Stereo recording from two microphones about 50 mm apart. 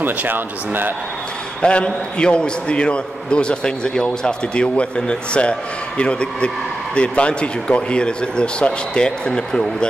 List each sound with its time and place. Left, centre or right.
0.0 s speech: right
1.6 s a man's voice: left